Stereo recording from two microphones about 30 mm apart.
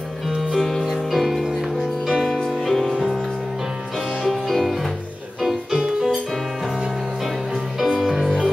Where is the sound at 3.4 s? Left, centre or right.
Centre.